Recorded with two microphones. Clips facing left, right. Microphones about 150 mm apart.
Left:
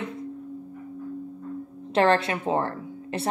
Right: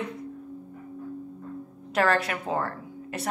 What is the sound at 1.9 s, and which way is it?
A woman's voice, 30° left (ahead or behind).